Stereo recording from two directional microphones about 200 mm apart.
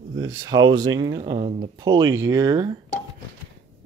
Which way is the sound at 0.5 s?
20° right (ahead or behind).